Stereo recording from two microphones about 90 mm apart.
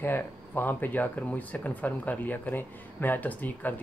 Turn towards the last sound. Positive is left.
turn(degrees=20)  # may be behind; listen again after turning